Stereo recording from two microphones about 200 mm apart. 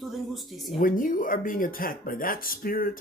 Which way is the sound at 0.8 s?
45° left (ahead or behind).